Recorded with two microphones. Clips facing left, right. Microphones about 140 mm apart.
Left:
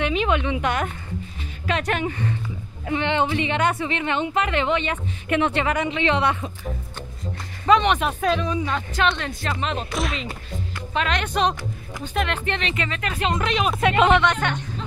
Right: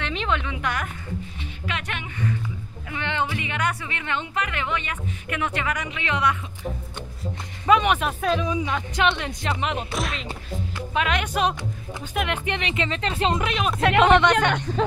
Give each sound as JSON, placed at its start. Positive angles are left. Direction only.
{"t": 0.0, "sound": "a woman's voice", "side_deg": 10}
{"t": 1.7, "sound": "speech", "side_deg": 35}
{"t": 2.9, "sound": "a woman's voice", "side_deg": 20}
{"t": 7.6, "sound": "speech", "side_deg": -5}
{"t": 9.9, "sound": "speech", "side_deg": 0}
{"t": 13.4, "sound": "speech", "side_deg": 0}